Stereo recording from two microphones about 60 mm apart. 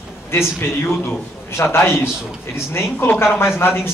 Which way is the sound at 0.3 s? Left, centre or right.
Left.